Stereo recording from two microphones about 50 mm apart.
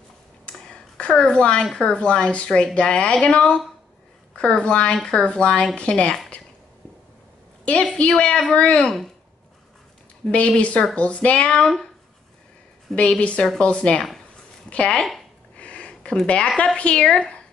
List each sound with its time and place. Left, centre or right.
0.5 s a sound: left
1.8 s speech: centre
7.6 s a woman's voice: left
8.8 s speech: centre
10.2 s speech: left
11.5 s a woman's voice: centre
12.9 s speech: left
15.5 s a sound: left
16.3 s a woman's voice: left